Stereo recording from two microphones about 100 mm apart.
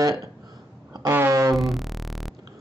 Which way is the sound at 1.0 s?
25° right (ahead or behind).